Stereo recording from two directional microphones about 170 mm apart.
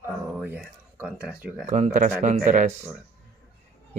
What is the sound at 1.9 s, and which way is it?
Speech, 50° right (ahead or behind).